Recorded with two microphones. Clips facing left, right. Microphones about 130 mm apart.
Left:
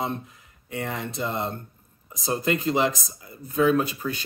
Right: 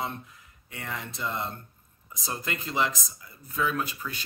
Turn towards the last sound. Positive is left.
turn(degrees=25)  # may be behind; listen again after turning